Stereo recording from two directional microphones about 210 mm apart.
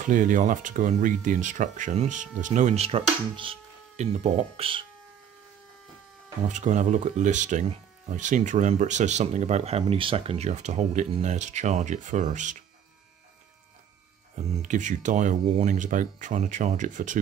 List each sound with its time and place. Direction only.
0.0 s speech: 35° right (ahead or behind)
6.4 s speech: 35° right (ahead or behind)
14.3 s speech: 35° right (ahead or behind)